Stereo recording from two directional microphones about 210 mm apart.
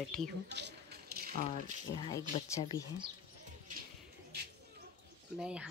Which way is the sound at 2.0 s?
15° left (ahead or behind).